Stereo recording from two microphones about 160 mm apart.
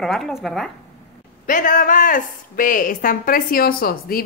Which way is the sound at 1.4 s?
55° left (ahead or behind).